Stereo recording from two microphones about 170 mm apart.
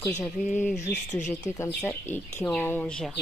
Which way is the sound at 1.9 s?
10° left (ahead or behind).